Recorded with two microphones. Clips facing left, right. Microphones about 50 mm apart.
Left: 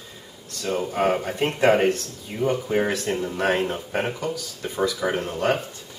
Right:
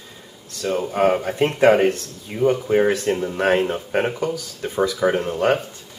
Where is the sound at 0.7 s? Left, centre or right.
Centre.